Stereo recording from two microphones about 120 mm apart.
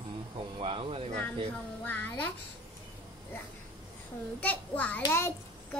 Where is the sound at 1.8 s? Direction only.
15° left (ahead or behind).